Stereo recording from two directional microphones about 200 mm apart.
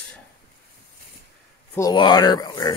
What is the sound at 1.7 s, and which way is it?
Speech, 20° left (ahead or behind).